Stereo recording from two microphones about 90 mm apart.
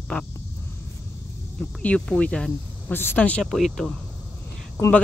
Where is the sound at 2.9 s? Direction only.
25° left (ahead or behind).